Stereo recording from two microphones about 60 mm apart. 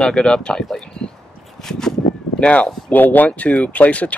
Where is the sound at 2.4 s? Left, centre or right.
Centre.